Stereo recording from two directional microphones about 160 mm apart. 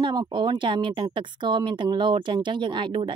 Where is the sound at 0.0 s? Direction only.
30° right (ahead or behind).